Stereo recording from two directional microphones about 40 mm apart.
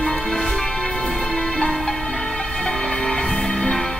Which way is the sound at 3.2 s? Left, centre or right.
Centre.